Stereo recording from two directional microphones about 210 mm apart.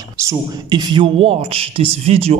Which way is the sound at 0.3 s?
20° right (ahead or behind).